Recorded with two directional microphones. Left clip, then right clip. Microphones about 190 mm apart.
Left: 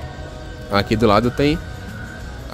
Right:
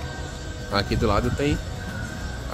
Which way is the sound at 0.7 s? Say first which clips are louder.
Left 8 dB; 45° left (ahead or behind).